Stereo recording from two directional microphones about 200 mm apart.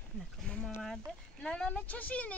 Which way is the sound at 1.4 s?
5° left (ahead or behind).